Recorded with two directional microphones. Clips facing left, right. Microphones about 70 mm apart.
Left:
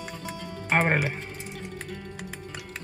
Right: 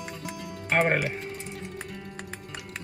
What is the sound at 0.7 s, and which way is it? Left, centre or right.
Speech, left.